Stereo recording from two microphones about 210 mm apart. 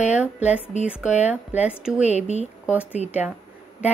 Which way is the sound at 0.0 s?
5° right (ahead or behind).